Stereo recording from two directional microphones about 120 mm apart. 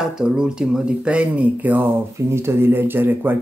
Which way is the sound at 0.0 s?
5° right (ahead or behind).